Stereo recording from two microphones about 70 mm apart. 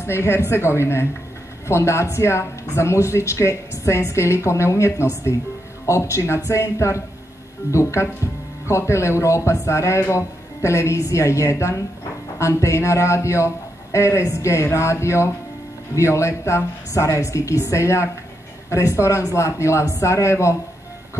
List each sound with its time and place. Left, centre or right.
0.0 s speech: left